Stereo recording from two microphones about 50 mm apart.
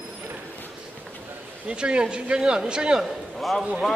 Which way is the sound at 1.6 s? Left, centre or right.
Right.